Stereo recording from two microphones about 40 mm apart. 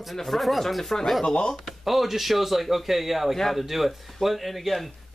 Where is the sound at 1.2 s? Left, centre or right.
Left.